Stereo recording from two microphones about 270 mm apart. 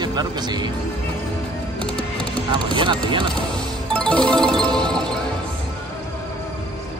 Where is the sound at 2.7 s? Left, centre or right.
Centre.